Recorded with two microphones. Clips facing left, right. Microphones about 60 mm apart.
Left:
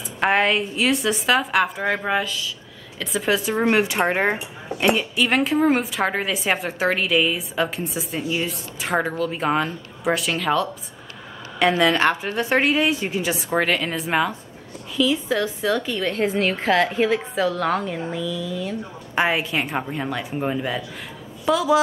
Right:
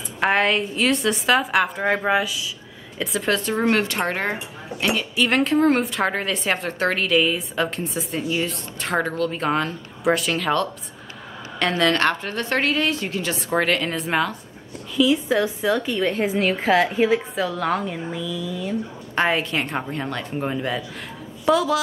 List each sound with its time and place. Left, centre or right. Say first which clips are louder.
0.2 s a woman's voice: even; centre
13.4 s speech: right 2 dB; centre
15.0 s speech: right 2 dB; centre